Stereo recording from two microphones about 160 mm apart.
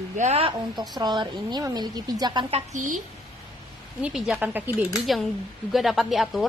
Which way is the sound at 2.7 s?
55° right (ahead or behind).